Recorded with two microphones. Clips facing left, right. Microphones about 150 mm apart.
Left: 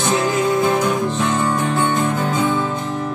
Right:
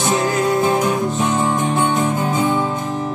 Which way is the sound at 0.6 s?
20° right (ahead or behind).